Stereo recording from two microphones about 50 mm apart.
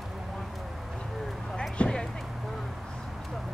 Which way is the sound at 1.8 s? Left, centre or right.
Centre.